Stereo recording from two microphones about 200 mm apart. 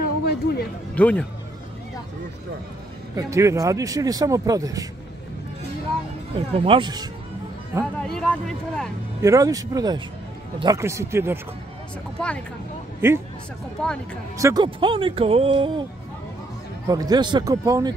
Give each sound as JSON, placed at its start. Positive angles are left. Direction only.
{"t": 0.0, "sound": "a sound", "side_deg": 50}
{"t": 0.9, "sound": "speech", "side_deg": 5}
{"t": 3.2, "sound": "speech", "side_deg": -15}
{"t": 6.5, "sound": "speech", "side_deg": -25}
{"t": 7.8, "sound": "speech", "side_deg": 5}
{"t": 9.2, "sound": "speech", "side_deg": -15}
{"t": 12.2, "sound": "speech", "side_deg": 5}
{"t": 14.4, "sound": "speech", "side_deg": -20}
{"t": 16.8, "sound": "speech", "side_deg": -20}